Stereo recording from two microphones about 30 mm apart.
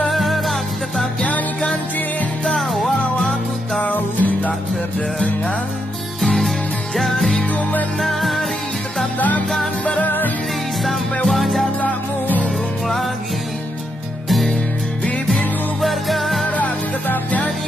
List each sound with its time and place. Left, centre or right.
0.1 s music: centre
2.5 s music: centre
3.2 s music: left
3.8 s music: left
6.2 s music: centre
10.0 s music: left
11.2 s music: centre
11.8 s music: left
15.8 s music: centre